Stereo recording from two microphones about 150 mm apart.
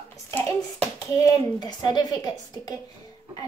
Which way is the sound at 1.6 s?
25° left (ahead or behind).